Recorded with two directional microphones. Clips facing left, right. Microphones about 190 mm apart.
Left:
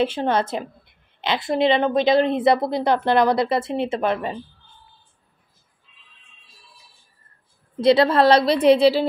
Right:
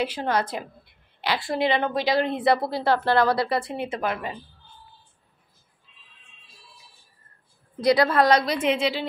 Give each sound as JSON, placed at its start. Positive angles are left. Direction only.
{"t": 0.0, "sound": "a woman's voice", "side_deg": 25}
{"t": 7.8, "sound": "a woman's voice", "side_deg": 25}